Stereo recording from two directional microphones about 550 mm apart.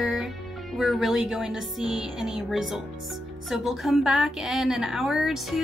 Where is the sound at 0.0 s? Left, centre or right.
Centre.